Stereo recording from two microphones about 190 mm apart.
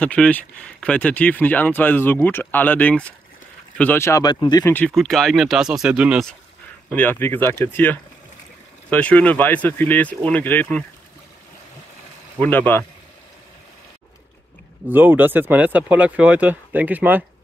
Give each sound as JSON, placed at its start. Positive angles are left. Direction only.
{"t": 0.0, "sound": "speech", "side_deg": 5}
{"t": 4.7, "sound": "speech", "side_deg": 5}
{"t": 6.9, "sound": "speech", "side_deg": 10}
{"t": 12.4, "sound": "speech", "side_deg": 10}
{"t": 14.9, "sound": "speech", "side_deg": -10}